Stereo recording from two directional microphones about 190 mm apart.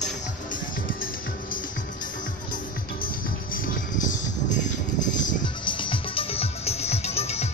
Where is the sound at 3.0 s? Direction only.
45° left (ahead or behind).